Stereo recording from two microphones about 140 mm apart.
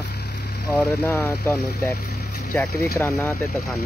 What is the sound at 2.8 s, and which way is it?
Speech, 20° left (ahead or behind).